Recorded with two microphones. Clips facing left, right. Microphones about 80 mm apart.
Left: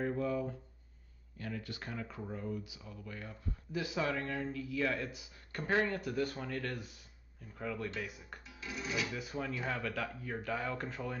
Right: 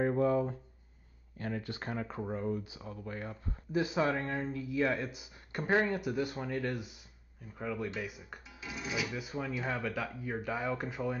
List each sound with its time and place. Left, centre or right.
0.0 s speech: right; by 11.1 s centre